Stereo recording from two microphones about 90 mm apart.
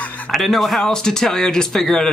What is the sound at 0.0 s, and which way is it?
Music, 15° left (ahead or behind).